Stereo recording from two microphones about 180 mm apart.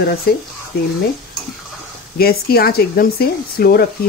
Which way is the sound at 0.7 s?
60° left (ahead or behind).